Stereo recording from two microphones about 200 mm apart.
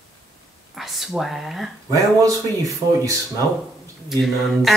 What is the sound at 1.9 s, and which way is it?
Speech, 15° right (ahead or behind).